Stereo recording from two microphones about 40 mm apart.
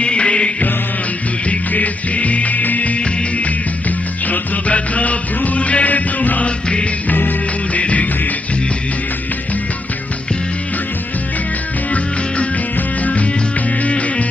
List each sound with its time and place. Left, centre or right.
0.0 s music: left
1.7 s music: left
7.1 s music: left
7.7 s music: left
13.0 s music: left